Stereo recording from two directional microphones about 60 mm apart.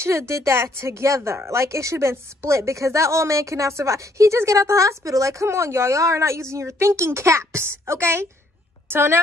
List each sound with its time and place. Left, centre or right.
0.0 s a woman's voice: right